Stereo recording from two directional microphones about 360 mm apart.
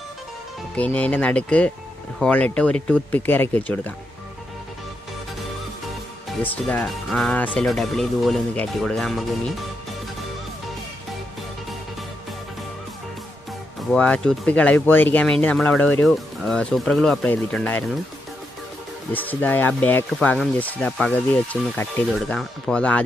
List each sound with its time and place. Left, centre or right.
0.7 s speech: centre
6.4 s speech: centre
13.9 s speech: centre
19.1 s speech: centre